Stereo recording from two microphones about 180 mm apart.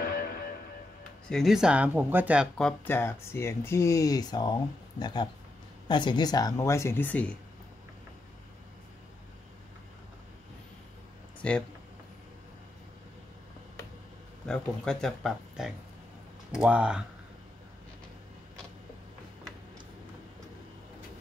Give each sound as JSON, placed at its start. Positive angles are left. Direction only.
{"t": 0.0, "sound": "music", "side_deg": 50}
{"t": 1.3, "sound": "speech", "side_deg": 0}
{"t": 11.4, "sound": "speech", "side_deg": 5}
{"t": 14.4, "sound": "speech", "side_deg": 5}